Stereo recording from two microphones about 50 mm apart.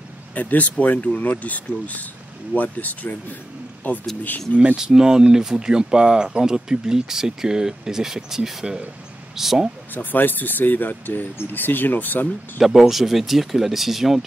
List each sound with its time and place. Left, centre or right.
0.3 s speech: left
4.7 s speech: centre
9.9 s speech: left
12.5 s speech: centre